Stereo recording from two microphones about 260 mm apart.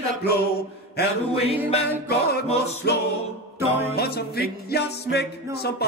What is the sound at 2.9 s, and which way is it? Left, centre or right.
Music, left.